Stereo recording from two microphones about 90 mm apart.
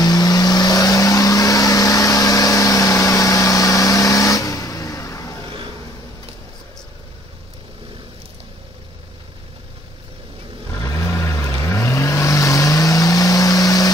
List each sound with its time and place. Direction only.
0.0 s vehicle: 45° left (ahead or behind)
10.8 s vehicle: 30° left (ahead or behind)